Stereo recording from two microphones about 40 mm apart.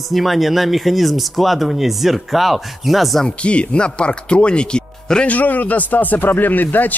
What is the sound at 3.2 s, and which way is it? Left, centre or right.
Speech, left.